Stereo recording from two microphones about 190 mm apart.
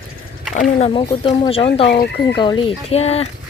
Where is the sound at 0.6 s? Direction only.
30° left (ahead or behind).